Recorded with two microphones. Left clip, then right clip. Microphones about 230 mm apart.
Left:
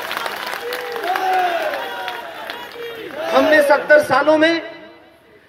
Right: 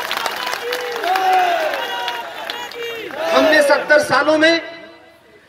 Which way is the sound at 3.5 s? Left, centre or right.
Right.